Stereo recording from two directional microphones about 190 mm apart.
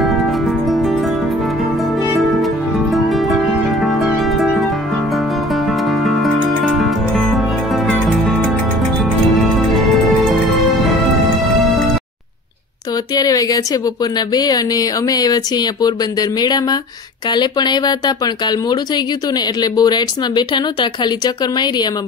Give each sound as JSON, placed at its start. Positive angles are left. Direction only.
{"t": 0.0, "sound": "music", "side_deg": 0}
{"t": 2.1, "sound": "music", "side_deg": 0}
{"t": 5.7, "sound": "music", "side_deg": 0}
{"t": 13.1, "sound": "speech", "side_deg": 20}